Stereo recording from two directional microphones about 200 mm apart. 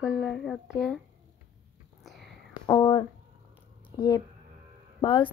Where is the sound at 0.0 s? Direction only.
Centre (ahead or behind).